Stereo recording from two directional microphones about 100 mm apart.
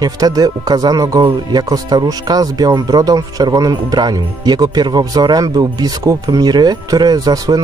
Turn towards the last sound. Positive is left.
turn(degrees=-40)  # may be behind; listen again after turning